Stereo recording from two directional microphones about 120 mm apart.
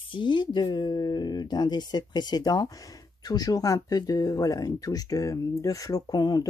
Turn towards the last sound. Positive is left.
turn(degrees=35)  # may be behind; listen again after turning